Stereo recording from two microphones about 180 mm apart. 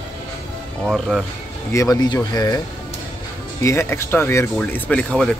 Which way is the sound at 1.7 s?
20° left (ahead or behind).